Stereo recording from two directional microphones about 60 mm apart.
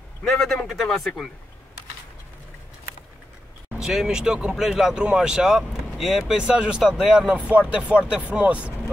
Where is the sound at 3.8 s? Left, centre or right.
Centre.